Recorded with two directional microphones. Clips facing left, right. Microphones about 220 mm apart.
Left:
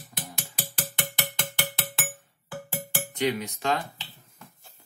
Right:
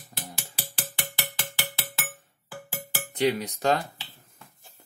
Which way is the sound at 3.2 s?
35° right (ahead or behind).